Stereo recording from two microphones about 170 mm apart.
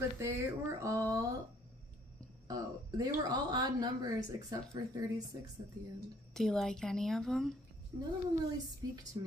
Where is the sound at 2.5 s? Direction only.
25° right (ahead or behind).